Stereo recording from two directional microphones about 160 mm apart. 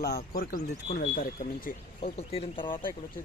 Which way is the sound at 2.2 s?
35° left (ahead or behind).